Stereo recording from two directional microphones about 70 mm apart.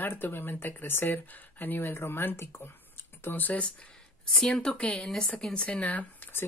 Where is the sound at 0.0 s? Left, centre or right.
Left.